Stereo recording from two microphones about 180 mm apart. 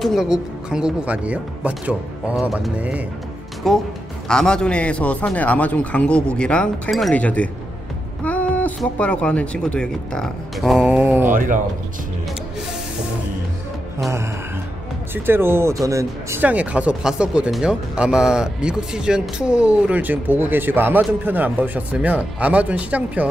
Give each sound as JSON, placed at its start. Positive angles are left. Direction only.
{"t": 0.0, "sound": "speech", "side_deg": 0}
{"t": 3.6, "sound": "speech", "side_deg": 0}
{"t": 11.3, "sound": "speech", "side_deg": -50}
{"t": 15.2, "sound": "speech", "side_deg": -10}